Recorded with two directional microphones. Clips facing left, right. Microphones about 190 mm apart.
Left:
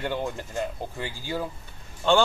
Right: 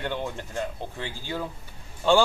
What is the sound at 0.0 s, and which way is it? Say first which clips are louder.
Speech: left 2 dB; 10° left (ahead or behind).